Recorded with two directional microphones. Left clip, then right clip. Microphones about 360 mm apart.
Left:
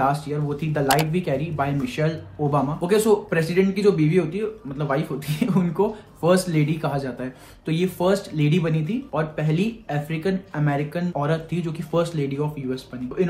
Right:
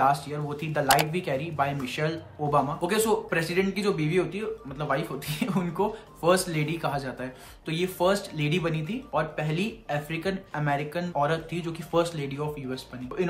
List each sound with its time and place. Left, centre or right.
0.0 s speech: centre